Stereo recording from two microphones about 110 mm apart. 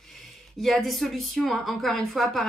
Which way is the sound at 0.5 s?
Centre (ahead or behind).